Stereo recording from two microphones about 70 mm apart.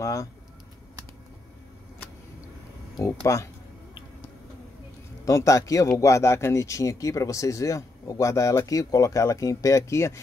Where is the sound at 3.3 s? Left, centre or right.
Left.